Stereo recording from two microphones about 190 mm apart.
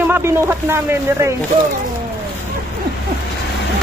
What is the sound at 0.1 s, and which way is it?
Speech, 15° right (ahead or behind).